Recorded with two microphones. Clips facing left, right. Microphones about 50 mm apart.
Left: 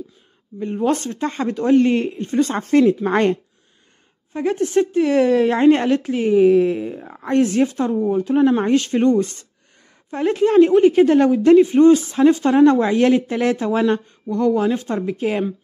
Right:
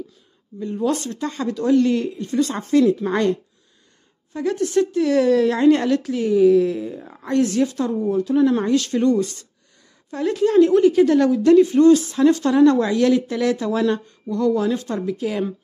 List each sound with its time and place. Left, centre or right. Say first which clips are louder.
0.6 s speech: left 2 dB; left